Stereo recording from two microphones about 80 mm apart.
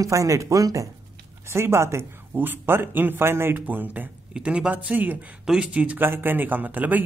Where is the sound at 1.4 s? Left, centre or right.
Right.